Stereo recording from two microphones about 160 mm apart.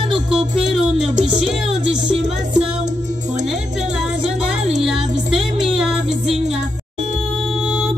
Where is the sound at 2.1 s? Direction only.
40° right (ahead or behind).